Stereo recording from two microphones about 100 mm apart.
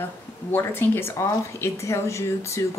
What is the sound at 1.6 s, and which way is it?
Speech, 30° left (ahead or behind).